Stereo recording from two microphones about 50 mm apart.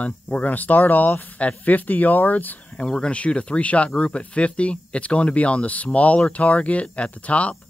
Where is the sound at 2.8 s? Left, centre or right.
Centre.